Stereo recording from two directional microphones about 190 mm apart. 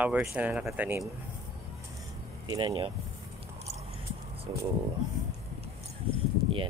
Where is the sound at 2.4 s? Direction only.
25° right (ahead or behind).